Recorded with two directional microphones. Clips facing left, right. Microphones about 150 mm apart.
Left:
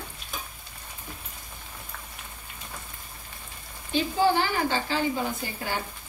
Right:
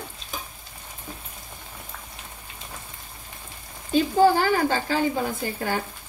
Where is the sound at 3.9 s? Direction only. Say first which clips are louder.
Right 5 dB; 45° right (ahead or behind).